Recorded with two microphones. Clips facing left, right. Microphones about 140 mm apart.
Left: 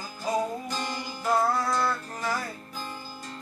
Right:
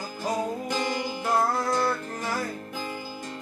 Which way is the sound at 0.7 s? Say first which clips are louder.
Right 5 dB; 60° right (ahead or behind).